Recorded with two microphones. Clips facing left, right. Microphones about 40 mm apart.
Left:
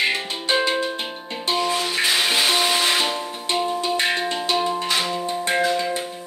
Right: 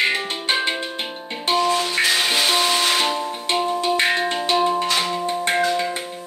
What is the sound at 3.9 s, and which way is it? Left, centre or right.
Music, centre.